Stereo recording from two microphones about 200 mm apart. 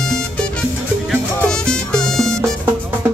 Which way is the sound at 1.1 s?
5° left (ahead or behind).